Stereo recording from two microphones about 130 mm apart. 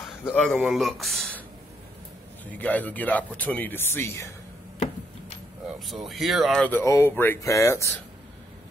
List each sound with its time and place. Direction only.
0.2 s speech: 10° left (ahead or behind)
2.5 s speech: 10° left (ahead or behind)
5.9 s speech: centre (ahead or behind)
6.7 s speech: 20° left (ahead or behind)